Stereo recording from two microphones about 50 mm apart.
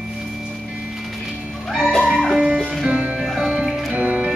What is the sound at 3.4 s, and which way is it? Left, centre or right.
Music, centre.